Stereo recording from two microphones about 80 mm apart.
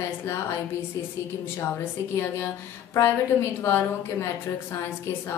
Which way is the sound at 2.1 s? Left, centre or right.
Left.